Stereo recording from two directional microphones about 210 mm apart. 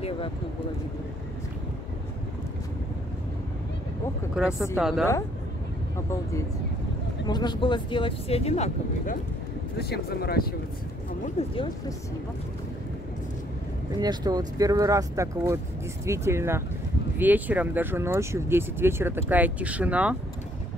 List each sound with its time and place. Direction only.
4.4 s a woman's voice: 5° right (ahead or behind)
7.2 s speech: 20° left (ahead or behind)
9.8 s speech: 50° left (ahead or behind)
11.3 s speech: 25° left (ahead or behind)
13.9 s speech: 20° right (ahead or behind)